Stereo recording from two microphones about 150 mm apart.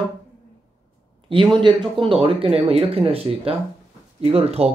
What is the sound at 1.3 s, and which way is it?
Speech, 35° right (ahead or behind).